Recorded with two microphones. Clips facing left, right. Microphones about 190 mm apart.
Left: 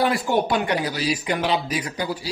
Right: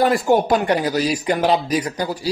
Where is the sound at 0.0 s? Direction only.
45° right (ahead or behind).